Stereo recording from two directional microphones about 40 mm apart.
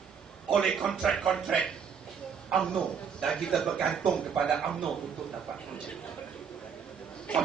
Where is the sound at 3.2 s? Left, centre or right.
Centre.